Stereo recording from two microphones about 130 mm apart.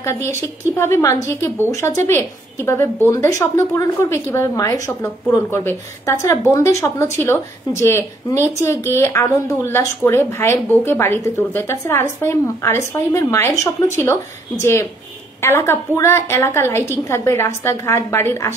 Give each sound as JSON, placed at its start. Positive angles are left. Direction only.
{"t": 0.0, "sound": "a woman's voice", "side_deg": 20}